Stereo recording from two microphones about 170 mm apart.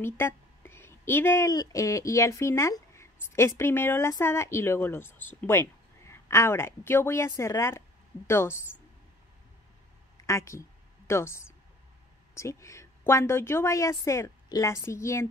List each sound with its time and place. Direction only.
0.0 s a woman's voice: 15° left (ahead or behind)
10.2 s a woman's voice: 15° left (ahead or behind)